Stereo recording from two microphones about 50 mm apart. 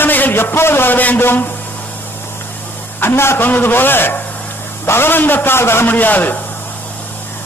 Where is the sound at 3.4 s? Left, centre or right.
Left.